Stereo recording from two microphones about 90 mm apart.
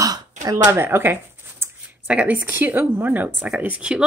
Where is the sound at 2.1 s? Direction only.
15° right (ahead or behind).